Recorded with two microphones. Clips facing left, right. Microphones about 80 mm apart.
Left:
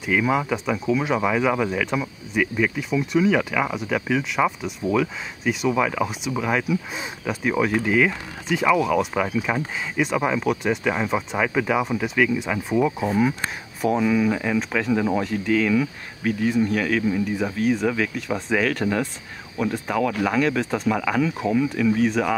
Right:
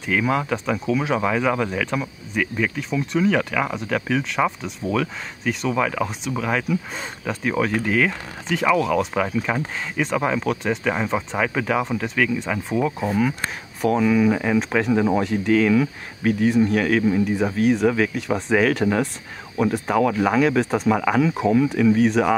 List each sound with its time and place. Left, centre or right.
0.0 s speech: centre